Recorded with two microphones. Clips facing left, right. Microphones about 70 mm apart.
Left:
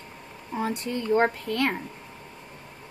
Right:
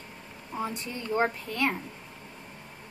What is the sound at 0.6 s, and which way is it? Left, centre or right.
Speech, left.